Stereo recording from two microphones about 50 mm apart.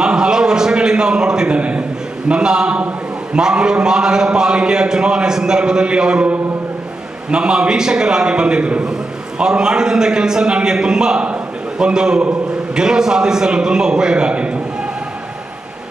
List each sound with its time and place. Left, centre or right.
0.0 s a sound: centre
2.2 s a man's voice: centre
7.2 s a man's voice: centre